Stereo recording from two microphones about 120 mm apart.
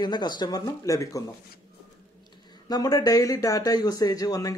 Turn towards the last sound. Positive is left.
turn(degrees=30)  # may be behind; listen again after turning